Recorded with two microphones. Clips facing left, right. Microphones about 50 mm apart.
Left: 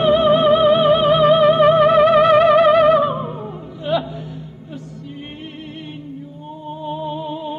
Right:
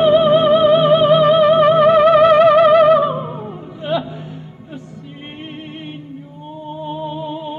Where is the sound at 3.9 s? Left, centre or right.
Centre.